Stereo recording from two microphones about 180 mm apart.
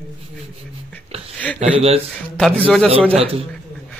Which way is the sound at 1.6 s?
35° right (ahead or behind).